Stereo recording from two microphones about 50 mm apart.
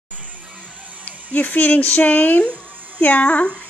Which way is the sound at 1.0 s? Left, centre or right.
Left.